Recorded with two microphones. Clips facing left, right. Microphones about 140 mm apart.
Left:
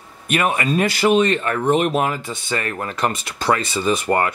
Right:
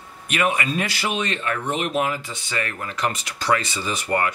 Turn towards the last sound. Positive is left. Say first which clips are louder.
# left 5 dB
turn(degrees=45)  # may be behind; listen again after turning